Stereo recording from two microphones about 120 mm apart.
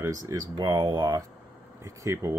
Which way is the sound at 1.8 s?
25° right (ahead or behind).